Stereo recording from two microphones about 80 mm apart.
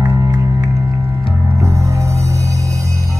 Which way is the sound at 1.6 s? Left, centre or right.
Right.